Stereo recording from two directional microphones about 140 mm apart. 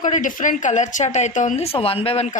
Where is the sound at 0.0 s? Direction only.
65° left (ahead or behind).